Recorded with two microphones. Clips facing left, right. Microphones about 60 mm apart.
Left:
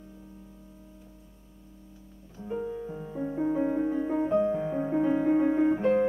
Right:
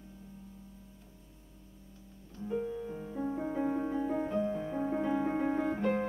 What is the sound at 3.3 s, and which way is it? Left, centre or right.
Music, centre.